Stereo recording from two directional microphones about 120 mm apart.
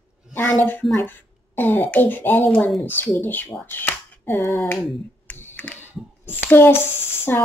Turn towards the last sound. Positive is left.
turn(degrees=20)  # may be behind; listen again after turning